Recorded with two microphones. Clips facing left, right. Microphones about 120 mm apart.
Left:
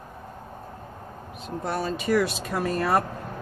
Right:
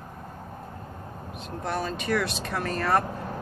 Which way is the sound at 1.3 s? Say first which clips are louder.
Left 1 dB; 5° left (ahead or behind).